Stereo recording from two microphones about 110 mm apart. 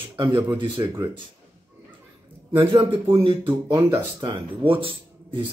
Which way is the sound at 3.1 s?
50° right (ahead or behind).